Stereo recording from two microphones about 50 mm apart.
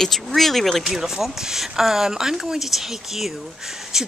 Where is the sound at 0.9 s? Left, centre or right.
Centre.